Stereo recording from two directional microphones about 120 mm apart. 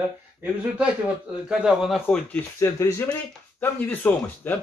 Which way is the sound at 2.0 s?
10° left (ahead or behind).